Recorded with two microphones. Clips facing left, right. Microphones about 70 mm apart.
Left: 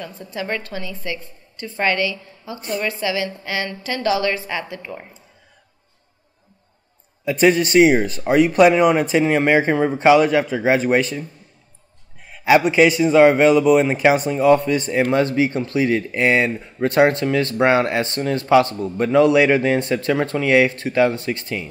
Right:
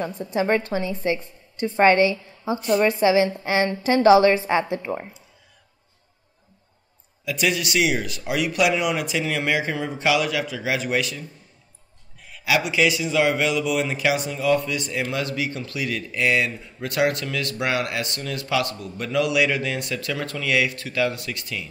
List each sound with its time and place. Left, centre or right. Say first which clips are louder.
0.2 s a woman's voice: right 5 dB; right
7.2 s a man's voice: left 8 dB; left
12.3 s a man's voice: left 8 dB; left